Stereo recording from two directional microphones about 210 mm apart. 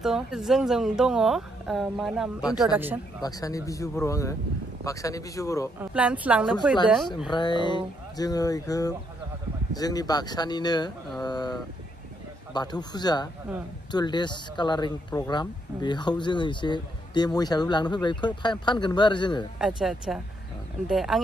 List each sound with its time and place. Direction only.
0.0 s a woman's voice: centre (ahead or behind)
3.2 s speech: 15° left (ahead or behind)
5.8 s speech: 5° right (ahead or behind)
7.2 s speech: 20° left (ahead or behind)
19.6 s a woman's voice: centre (ahead or behind)